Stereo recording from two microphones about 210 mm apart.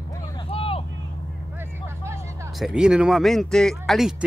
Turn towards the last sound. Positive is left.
turn(degrees=0)  # may be behind; listen again after turning